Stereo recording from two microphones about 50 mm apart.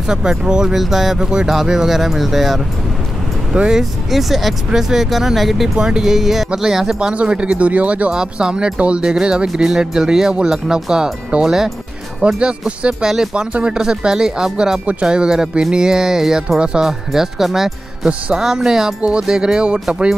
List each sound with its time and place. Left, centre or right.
0.0 s speech: centre
3.7 s speech: centre
5.8 s speech: centre
8.1 s speech: centre